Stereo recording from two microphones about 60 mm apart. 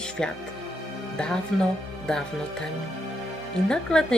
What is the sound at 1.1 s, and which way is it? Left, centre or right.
Speech, centre.